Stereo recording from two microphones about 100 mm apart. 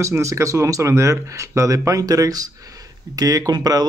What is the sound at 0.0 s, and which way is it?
Speech, 30° right (ahead or behind).